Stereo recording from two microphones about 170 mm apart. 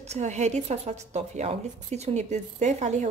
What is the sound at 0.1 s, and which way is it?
A woman's voice, 40° right (ahead or behind).